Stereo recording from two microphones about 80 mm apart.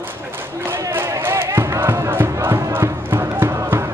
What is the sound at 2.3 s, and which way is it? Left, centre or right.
Crowd, right.